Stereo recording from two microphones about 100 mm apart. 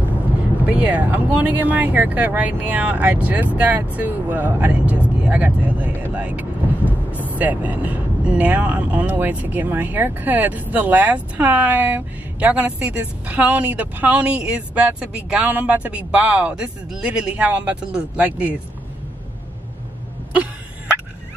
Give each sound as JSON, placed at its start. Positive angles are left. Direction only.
{"t": 0.7, "sound": "speech", "side_deg": -15}
{"t": 7.1, "sound": "vehicle", "side_deg": 20}
{"t": 7.3, "sound": "speech", "side_deg": -15}